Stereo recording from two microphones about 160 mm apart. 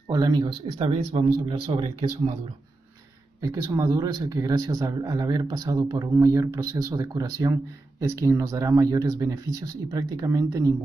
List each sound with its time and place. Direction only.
0.1 s speech: 25° right (ahead or behind)
0.7 s speech: 35° right (ahead or behind)
3.3 s speech: 20° right (ahead or behind)